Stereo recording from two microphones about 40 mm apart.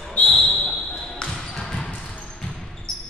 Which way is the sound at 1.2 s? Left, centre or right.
Centre.